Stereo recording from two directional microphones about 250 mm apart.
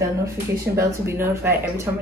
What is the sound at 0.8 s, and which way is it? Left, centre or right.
Speech, centre.